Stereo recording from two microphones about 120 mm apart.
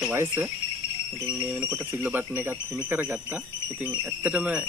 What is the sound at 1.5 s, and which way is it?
Speech, 20° right (ahead or behind).